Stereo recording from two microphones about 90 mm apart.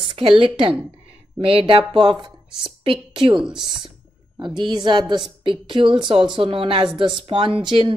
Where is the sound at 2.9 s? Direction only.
75° right (ahead or behind).